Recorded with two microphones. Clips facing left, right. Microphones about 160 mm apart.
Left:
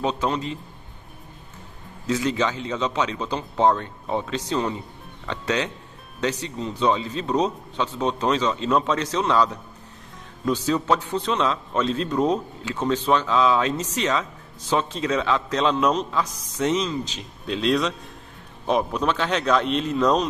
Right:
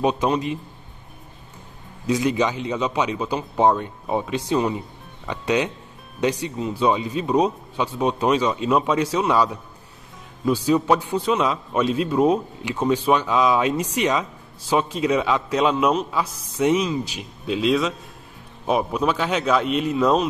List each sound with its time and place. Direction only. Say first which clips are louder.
0.0 s a man's voice: right 4 dB; 15° right (ahead or behind)
2.0 s a man's voice: right 3 dB; 15° right (ahead or behind)